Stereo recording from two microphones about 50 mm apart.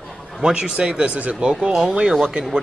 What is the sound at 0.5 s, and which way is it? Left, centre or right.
Speech, centre.